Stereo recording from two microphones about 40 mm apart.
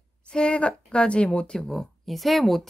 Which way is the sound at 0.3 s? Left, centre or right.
Left.